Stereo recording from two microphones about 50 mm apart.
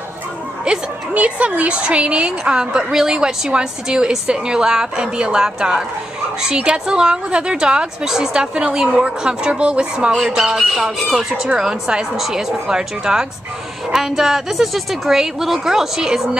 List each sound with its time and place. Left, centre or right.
0.7 s a woman's voice: right; by 16.3 s centre